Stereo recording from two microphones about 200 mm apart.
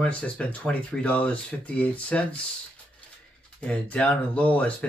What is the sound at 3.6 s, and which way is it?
Speech, 5° left (ahead or behind).